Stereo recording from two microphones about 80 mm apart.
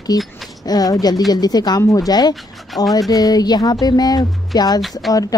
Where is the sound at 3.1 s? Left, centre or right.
Left.